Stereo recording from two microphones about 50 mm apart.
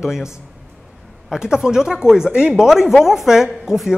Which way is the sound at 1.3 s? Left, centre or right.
Centre.